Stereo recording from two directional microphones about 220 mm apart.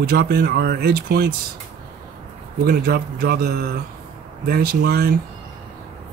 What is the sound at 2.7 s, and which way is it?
Speech, 45° right (ahead or behind).